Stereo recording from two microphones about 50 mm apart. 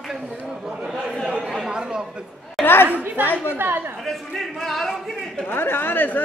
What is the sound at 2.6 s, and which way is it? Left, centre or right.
Speech, left.